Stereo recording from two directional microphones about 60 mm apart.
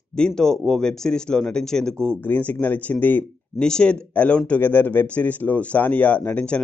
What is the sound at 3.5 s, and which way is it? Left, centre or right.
Speech, centre.